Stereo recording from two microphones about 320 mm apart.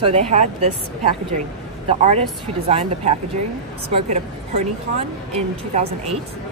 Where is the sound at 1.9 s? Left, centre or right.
Centre.